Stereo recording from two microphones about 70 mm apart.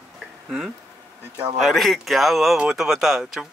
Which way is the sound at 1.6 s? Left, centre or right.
Centre.